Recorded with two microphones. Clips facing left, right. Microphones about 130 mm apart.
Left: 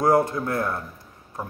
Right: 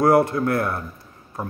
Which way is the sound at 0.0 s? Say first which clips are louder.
Right 3 dB; 65° right (ahead or behind).